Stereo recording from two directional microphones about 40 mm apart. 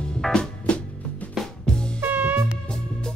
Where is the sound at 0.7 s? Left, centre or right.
Left.